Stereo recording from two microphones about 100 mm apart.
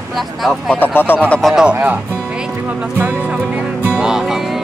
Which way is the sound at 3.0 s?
10° right (ahead or behind).